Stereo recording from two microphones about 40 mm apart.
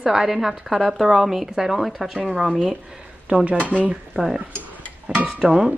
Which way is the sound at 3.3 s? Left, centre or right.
Right.